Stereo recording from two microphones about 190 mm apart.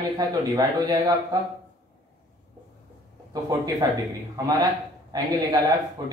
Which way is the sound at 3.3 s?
20° right (ahead or behind).